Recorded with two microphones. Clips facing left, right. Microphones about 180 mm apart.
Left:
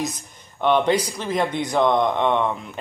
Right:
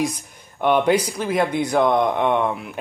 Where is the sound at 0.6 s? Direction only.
10° right (ahead or behind).